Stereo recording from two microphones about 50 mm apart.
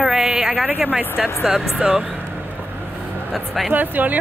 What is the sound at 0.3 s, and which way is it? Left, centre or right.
Speech, centre.